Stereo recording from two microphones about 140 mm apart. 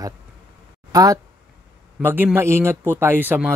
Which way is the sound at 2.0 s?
15° right (ahead or behind).